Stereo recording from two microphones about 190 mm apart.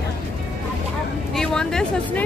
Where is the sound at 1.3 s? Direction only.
5° left (ahead or behind).